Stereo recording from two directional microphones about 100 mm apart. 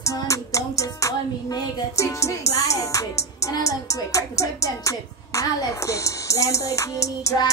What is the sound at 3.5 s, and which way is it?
Music, 35° left (ahead or behind).